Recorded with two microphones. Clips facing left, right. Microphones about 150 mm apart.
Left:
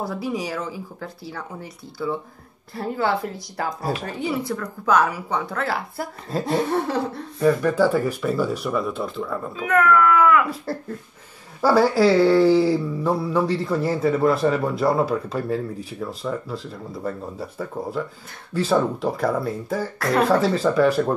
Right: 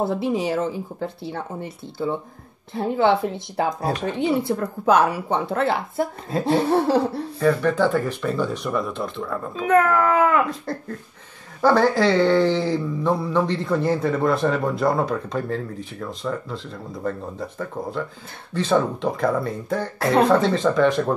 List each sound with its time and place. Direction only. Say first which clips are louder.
0.0 s speech: right 5 dB; 25° right (ahead or behind)
2.7 s speech: right 4 dB; 25° right (ahead or behind)
6.7 s laughter: right 4 dB; 30° right (ahead or behind)
7.3 s speech: left 1 dB; 10° left (ahead or behind)
9.7 s speech: even; 35° right (ahead or behind)
10.5 s speech: even; 5° left (ahead or behind)